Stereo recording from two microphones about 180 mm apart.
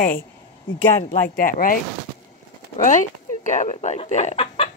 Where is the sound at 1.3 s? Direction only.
50° left (ahead or behind).